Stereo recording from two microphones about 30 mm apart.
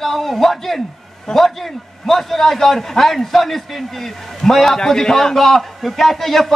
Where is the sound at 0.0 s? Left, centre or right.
Centre.